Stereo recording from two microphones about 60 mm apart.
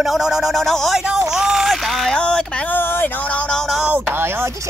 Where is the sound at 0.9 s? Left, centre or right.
Centre.